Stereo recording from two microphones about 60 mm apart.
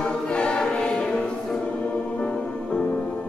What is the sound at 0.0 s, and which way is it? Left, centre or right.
Choir, centre.